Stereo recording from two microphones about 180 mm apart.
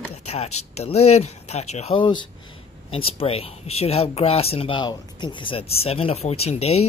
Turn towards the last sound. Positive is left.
turn(degrees=35)  # may be behind; listen again after turning